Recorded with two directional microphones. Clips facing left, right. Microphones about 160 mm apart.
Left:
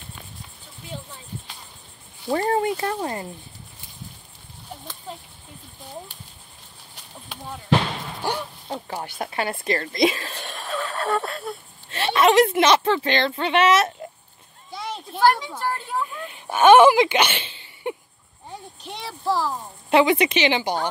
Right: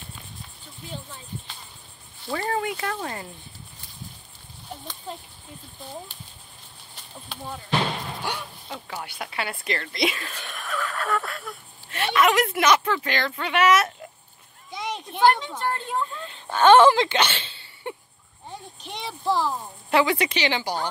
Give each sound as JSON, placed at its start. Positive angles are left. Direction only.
{"t": 2.3, "sound": "speech", "side_deg": 35}
{"t": 8.2, "sound": "speech", "side_deg": 40}
{"t": 15.2, "sound": "a sound", "side_deg": 10}
{"t": 19.2, "sound": "speech", "side_deg": 5}
{"t": 19.9, "sound": "a woman's voice", "side_deg": 20}